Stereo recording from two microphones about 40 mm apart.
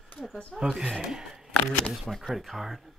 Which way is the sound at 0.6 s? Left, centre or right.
Centre.